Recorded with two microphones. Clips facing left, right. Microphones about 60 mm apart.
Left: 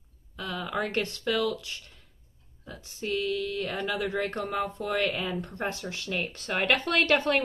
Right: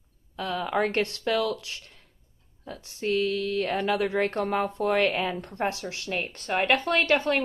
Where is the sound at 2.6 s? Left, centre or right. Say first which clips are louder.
Right 5 dB; right.